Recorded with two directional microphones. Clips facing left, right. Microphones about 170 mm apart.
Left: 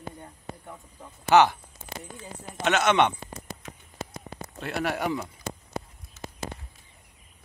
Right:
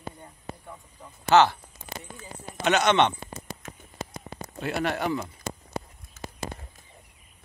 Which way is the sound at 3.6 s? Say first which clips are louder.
Right 1 dB; 50° right (ahead or behind).